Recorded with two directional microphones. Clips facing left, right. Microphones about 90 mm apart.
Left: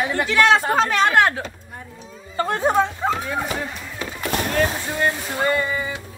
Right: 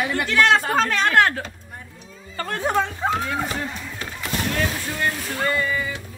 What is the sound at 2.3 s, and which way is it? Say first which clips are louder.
Speech: left 4 dB; 25° left (ahead or behind).